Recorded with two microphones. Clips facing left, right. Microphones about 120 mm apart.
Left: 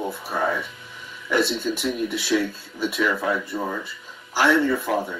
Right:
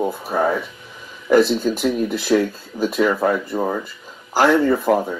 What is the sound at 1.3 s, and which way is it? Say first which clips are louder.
Speech: right 8 dB; 45° right (ahead or behind).